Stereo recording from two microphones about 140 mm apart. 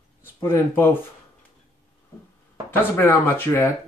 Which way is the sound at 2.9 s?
20° left (ahead or behind).